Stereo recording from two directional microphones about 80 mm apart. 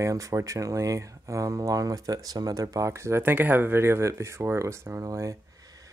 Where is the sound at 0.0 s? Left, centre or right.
Right.